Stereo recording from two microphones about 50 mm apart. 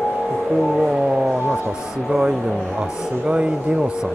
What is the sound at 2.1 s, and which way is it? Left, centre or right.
Speech, centre.